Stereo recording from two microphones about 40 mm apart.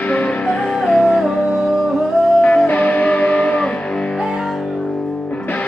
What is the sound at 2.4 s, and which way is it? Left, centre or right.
Music, left.